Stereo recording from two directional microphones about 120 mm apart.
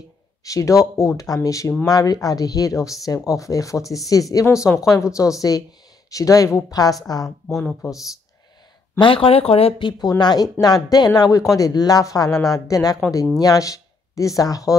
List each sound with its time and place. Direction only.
0.4 s speech: 30° left (ahead or behind)
7.4 s speech: 5° left (ahead or behind)
8.9 s speech: 45° left (ahead or behind)
10.0 s speech: 35° left (ahead or behind)